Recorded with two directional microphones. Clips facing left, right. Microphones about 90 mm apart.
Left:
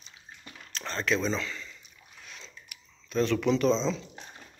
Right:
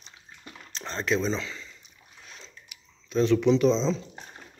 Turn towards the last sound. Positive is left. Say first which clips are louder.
# right 3 dB
turn(degrees=-20)  # may be behind; listen again after turning